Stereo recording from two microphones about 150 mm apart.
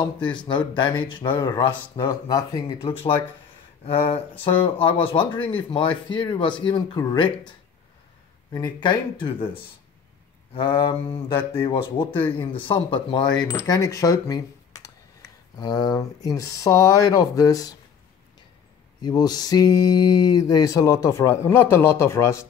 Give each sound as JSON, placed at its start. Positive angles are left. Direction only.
{"t": 0.0, "sound": "speech", "side_deg": 30}
{"t": 2.8, "sound": "speech", "side_deg": 35}
{"t": 4.1, "sound": "speech", "side_deg": 35}
{"t": 8.5, "sound": "speech", "side_deg": 30}
{"t": 18.9, "sound": "speech", "side_deg": 25}